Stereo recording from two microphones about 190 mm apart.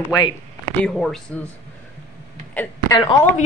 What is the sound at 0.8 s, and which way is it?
Speech, centre (ahead or behind).